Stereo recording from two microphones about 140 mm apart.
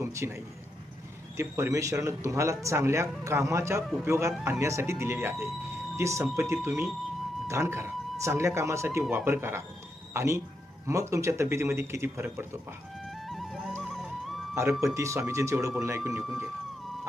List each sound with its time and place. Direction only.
0.0 s a man's voice: 20° right (ahead or behind)
13.3 s music: centre (ahead or behind)
14.5 s speech: 20° right (ahead or behind)